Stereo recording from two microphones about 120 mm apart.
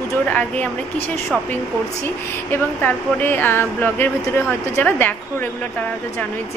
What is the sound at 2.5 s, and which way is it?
Speech, 15° left (ahead or behind).